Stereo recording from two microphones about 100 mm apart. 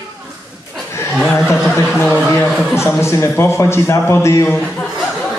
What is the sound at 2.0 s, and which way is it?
A man's voice, 20° left (ahead or behind).